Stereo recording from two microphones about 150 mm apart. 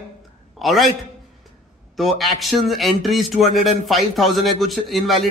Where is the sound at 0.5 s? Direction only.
Centre (ahead or behind).